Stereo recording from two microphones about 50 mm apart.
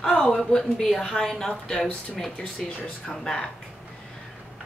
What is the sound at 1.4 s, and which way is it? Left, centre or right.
Speech, centre.